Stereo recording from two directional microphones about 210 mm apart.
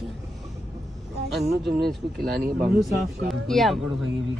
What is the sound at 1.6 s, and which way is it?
Speech, centre (ahead or behind).